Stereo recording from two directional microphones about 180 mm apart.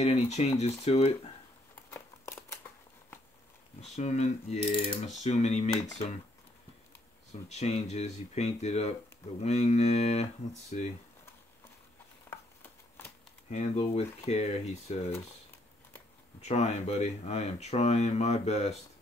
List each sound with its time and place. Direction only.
0.0 s speech: 35° left (ahead or behind)
1.9 s a sound: 15° left (ahead or behind)
3.8 s speech: 40° left (ahead or behind)
7.4 s speech: 40° left (ahead or behind)
12.3 s a sound: 10° left (ahead or behind)
13.5 s speech: 35° left (ahead or behind)
16.3 s speech: 35° left (ahead or behind)